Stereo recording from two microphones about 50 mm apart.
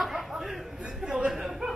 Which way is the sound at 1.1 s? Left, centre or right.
Centre.